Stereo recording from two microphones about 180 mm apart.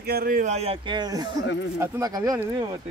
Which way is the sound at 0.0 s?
55° right (ahead or behind).